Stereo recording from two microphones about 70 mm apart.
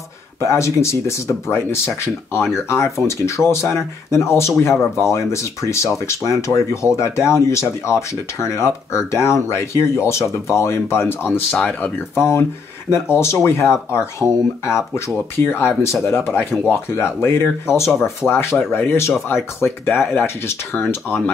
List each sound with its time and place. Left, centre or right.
0.4 s speech: left